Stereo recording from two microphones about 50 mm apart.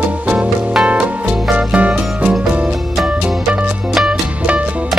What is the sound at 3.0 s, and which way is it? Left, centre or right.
Music, centre.